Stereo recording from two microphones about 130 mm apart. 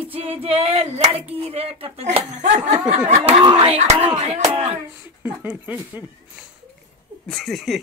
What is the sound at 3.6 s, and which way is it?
Music, 50° right (ahead or behind).